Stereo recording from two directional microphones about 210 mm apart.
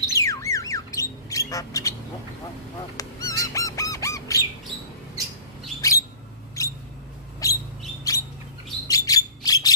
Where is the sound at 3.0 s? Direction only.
15° left (ahead or behind).